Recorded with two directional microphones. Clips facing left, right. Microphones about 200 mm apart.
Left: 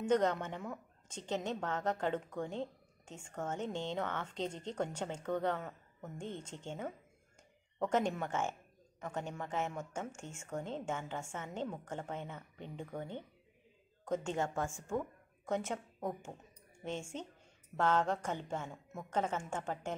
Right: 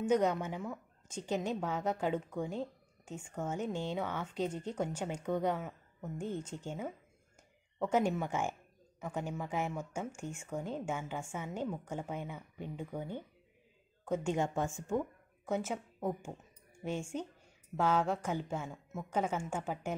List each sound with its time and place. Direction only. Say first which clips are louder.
0.0 s a woman's voice: right 1 dB; 10° right (ahead or behind)
15.4 s a woman's voice: right 1 dB; 5° right (ahead or behind)